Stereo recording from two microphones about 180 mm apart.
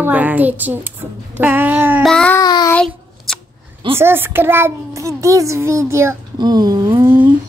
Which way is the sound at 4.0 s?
10° right (ahead or behind).